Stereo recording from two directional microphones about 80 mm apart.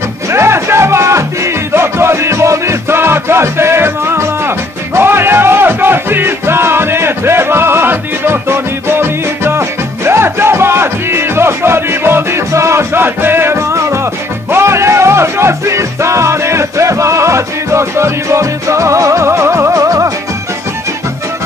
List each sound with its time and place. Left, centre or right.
0.3 s music: right